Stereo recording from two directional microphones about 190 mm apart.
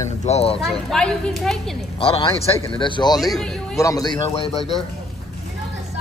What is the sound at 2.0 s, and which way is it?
Speech, 30° left (ahead or behind).